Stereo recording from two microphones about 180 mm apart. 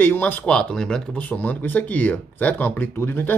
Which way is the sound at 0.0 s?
10° left (ahead or behind).